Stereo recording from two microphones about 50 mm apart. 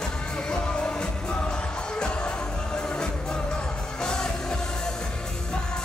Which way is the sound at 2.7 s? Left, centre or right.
Centre.